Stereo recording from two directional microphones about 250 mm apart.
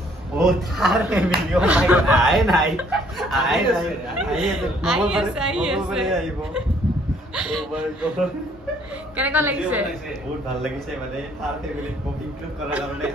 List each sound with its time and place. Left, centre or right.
0.4 s a woman's voice: centre
9.1 s a woman's voice: centre